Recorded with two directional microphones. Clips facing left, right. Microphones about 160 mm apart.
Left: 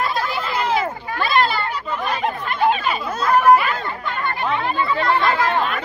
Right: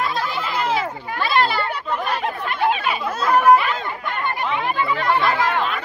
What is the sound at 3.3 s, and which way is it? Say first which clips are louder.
Chatter: even; centre (ahead or behind).